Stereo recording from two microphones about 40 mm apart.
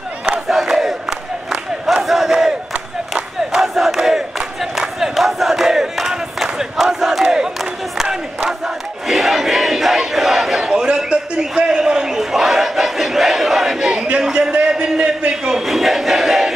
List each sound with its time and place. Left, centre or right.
0.5 s crowd: centre
2.0 s crowd: centre
3.5 s crowd: centre
8.5 s crowd: centre
12.2 s battle cry: centre
14.7 s a sound: centre
15.6 s a sound: centre